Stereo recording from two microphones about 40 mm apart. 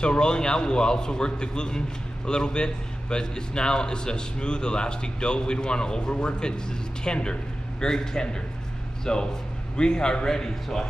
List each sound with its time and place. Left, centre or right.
0.0 s a man's voice: left